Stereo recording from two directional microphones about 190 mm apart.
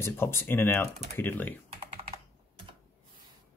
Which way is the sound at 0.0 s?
15° left (ahead or behind).